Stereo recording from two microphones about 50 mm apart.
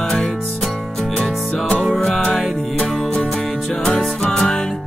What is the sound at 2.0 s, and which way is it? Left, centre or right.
Music, centre.